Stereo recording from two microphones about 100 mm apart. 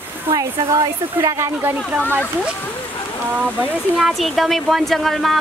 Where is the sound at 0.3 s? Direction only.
35° right (ahead or behind).